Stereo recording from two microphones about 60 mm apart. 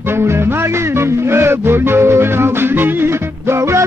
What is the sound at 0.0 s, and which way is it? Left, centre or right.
Music, right.